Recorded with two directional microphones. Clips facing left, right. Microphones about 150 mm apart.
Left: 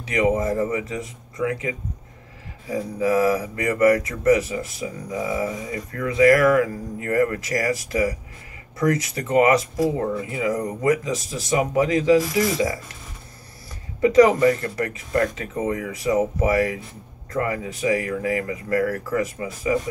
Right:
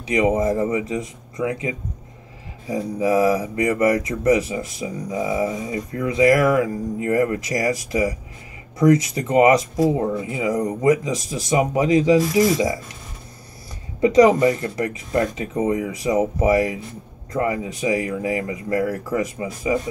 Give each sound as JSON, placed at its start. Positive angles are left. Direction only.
{"t": 0.0, "sound": "speech", "side_deg": -20}
{"t": 14.0, "sound": "speech", "side_deg": -20}